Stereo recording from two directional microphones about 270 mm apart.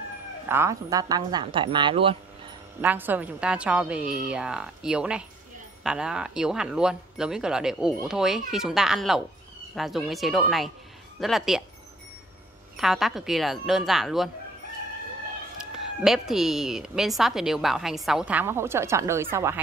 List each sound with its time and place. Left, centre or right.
0.5 s speech: centre
2.8 s a woman's voice: centre
12.7 s a woman's voice: centre
15.7 s a woman's voice: centre